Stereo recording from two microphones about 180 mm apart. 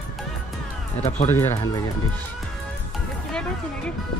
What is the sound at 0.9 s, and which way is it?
Speech, 40° left (ahead or behind).